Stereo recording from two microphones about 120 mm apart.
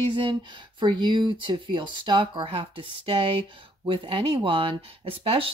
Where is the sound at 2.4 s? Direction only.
55° right (ahead or behind).